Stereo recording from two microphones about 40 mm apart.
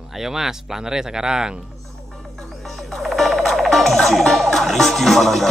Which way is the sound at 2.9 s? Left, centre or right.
Centre.